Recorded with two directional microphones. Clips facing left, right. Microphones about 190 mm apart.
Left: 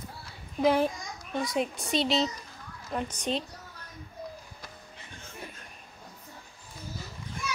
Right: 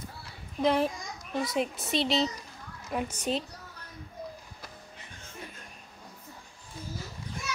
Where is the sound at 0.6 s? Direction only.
Centre (ahead or behind).